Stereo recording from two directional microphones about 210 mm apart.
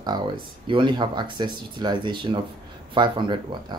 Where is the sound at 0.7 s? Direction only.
20° right (ahead or behind).